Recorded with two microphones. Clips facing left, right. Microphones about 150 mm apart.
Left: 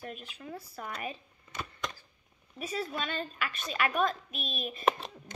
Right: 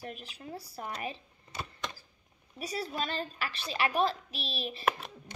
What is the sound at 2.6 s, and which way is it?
A child's voice, 40° right (ahead or behind).